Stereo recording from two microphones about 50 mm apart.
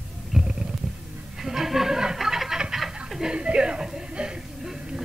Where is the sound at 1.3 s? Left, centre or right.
Centre.